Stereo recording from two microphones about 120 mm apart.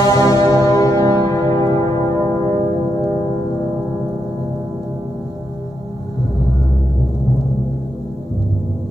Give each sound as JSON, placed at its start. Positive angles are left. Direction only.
{"t": 0.0, "sound": "music", "side_deg": 30}